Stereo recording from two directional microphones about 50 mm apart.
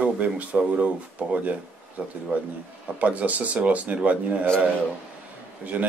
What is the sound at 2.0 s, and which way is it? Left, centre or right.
Speech, right.